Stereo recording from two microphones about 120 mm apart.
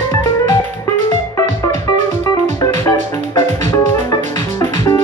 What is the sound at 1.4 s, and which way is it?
Music, 90° right.